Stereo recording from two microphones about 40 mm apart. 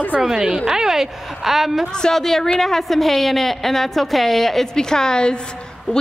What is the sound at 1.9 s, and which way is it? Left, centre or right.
A woman's voice, centre.